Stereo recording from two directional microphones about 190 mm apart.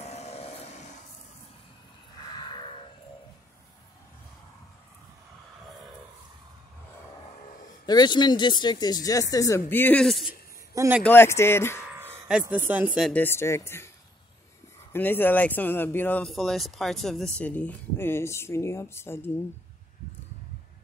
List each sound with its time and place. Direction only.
0.0 s vehicle: 35° left (ahead or behind)
2.3 s a sound: 25° left (ahead or behind)
7.8 s speech: 20° left (ahead or behind); by 10.3 s centre (ahead or behind)
10.7 s a sound: 15° right (ahead or behind)
11.1 s speech: 15° left (ahead or behind)
11.9 s speech: 10° right (ahead or behind)
13.1 s speech: 10° left (ahead or behind)
14.9 s speech: 10° left (ahead or behind)